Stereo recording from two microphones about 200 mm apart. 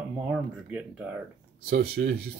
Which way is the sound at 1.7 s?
50° right (ahead or behind).